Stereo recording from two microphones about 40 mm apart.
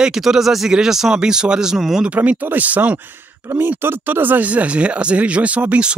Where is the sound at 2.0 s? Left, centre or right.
Right.